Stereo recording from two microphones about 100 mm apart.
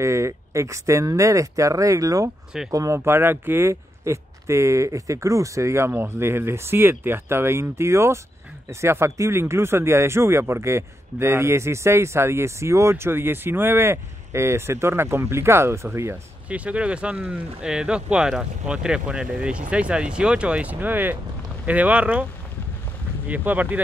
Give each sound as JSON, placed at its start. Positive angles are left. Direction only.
{"t": 0.0, "sound": "speech", "side_deg": -30}
{"t": 16.4, "sound": "speech", "side_deg": -15}
{"t": 23.2, "sound": "speech", "side_deg": -15}